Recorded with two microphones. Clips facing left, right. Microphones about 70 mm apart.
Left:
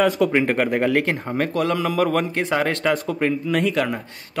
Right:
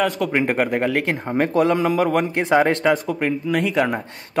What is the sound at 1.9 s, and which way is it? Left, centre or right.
Speech, centre.